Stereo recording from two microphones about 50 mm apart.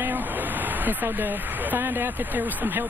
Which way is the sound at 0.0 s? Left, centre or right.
Right.